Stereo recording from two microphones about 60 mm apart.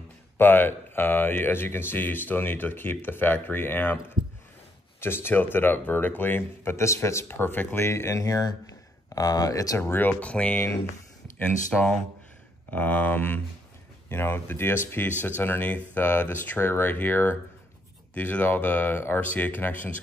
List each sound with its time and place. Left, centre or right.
0.4 s speech: left
7.2 s speech: left
9.8 s speech: left
10.2 s speech: left